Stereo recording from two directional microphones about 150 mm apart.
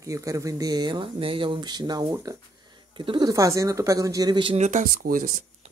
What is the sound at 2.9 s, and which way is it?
Speech, 30° right (ahead or behind).